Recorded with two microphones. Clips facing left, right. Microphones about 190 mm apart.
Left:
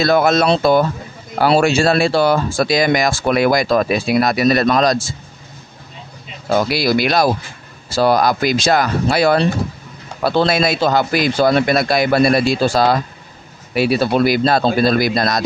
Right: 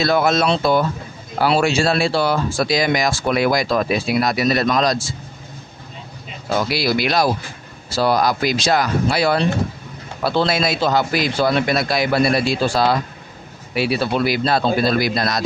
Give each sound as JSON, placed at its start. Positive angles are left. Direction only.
{"t": 0.0, "sound": "speech", "side_deg": 50}
{"t": 6.5, "sound": "speech", "side_deg": 45}